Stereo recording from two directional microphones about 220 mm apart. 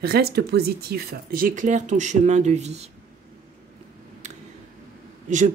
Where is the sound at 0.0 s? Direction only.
45° right (ahead or behind); by 2.9 s 30° right (ahead or behind).